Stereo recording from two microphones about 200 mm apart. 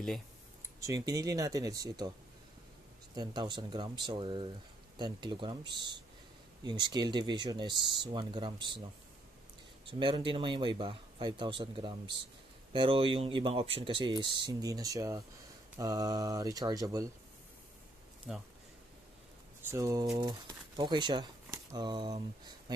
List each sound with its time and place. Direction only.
0.7 s speech: 15° right (ahead or behind)
3.2 s speech: 20° right (ahead or behind)
9.8 s speech: 25° right (ahead or behind)
18.3 s speech: 5° right (ahead or behind)
19.7 s speech: 15° right (ahead or behind)